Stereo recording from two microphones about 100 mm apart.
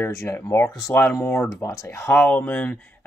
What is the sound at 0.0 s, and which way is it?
Speech, 25° left (ahead or behind).